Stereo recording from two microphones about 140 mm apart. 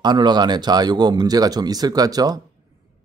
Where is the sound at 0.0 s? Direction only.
30° right (ahead or behind).